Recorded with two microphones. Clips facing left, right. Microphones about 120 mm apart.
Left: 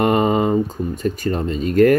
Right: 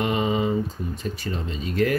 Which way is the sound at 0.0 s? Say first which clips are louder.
Left 7 dB; 50° left (ahead or behind).